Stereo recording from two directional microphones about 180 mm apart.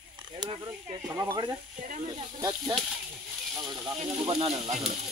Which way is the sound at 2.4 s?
20° right (ahead or behind).